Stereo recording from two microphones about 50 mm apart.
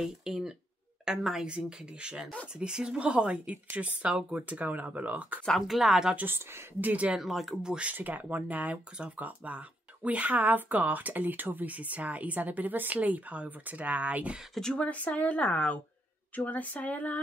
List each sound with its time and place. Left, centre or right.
0.0 s a sound: centre
1.0 s a woman's voice: centre
1.4 s speech: centre
5.5 s speech: centre
6.2 s a woman's voice: right
6.8 s speech: right
7.2 s speech: centre
7.6 s speech: centre
7.9 s speech: right
8.9 s speech: right
14.8 s speech: left
16.3 s a sound: left